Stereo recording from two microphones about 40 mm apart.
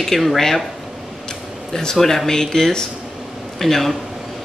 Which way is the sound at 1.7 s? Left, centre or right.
Centre.